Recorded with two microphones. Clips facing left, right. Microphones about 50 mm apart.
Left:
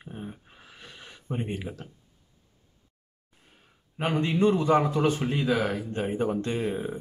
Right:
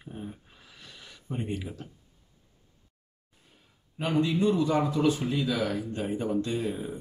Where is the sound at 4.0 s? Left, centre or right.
Left.